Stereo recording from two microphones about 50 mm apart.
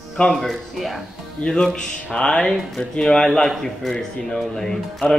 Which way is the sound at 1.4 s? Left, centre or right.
Centre.